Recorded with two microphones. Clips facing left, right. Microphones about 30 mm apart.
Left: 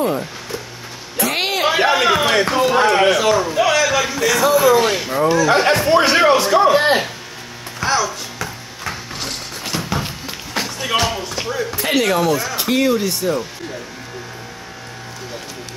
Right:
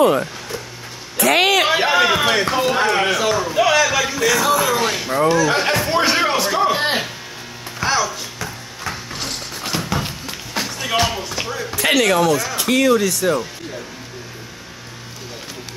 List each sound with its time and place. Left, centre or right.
1.1 s a sound: right
1.7 s a man's voice: centre
5.9 s music: centre
6.4 s a sound: centre
7.8 s music: centre
8.4 s a sound: centre
12.0 s speech: centre
12.7 s speech: right
13.2 s speech: right